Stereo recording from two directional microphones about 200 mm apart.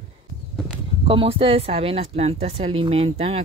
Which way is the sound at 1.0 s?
25° right (ahead or behind).